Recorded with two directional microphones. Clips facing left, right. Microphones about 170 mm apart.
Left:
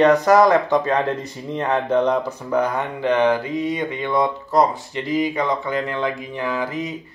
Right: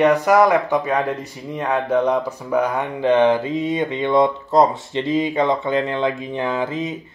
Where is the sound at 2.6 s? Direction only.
15° right (ahead or behind).